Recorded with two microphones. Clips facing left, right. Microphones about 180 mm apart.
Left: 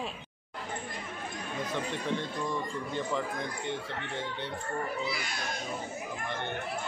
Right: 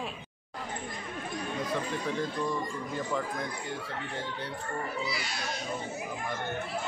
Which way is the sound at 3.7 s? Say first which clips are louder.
Left 1 dB; centre (ahead or behind).